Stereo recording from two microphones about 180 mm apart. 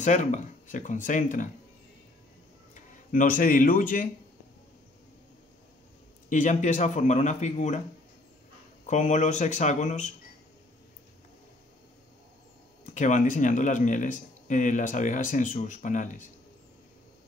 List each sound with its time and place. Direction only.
0.0 s speech: 40° left (ahead or behind)
2.7 s speech: 45° left (ahead or behind)
6.2 s speech: 45° left (ahead or behind)
8.8 s speech: 40° left (ahead or behind)
12.9 s speech: 45° left (ahead or behind)